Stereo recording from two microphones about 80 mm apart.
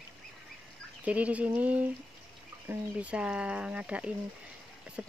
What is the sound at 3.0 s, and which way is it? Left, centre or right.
Speech, centre.